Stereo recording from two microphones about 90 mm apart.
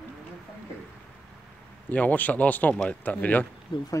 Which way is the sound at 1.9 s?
20° left (ahead or behind).